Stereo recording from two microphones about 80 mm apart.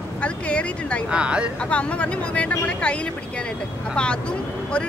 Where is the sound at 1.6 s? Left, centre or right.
Centre.